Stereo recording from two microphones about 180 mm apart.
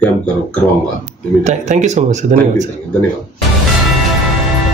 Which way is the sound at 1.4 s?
40° right (ahead or behind).